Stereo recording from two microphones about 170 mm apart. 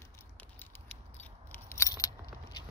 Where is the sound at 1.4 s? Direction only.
15° left (ahead or behind).